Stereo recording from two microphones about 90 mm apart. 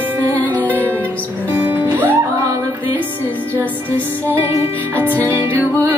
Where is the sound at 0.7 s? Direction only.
20° left (ahead or behind).